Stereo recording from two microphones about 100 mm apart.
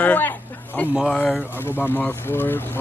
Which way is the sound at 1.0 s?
15° left (ahead or behind).